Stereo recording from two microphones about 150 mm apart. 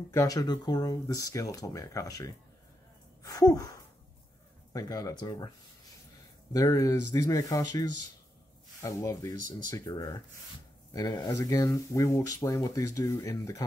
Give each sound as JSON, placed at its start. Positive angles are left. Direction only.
{"t": 0.1, "sound": "speech", "side_deg": 20}
{"t": 3.2, "sound": "a sound", "side_deg": 25}
{"t": 4.7, "sound": "speech", "side_deg": 25}
{"t": 6.5, "sound": "speech", "side_deg": 25}
{"t": 8.8, "sound": "speech", "side_deg": 20}